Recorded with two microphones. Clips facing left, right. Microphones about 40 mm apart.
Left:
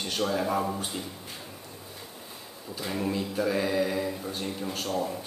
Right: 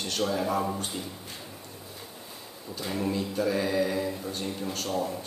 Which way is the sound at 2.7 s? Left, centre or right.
Centre.